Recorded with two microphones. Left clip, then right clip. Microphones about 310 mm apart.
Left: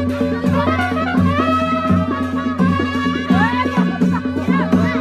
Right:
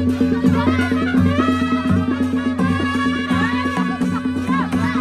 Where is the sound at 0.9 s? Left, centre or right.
Left.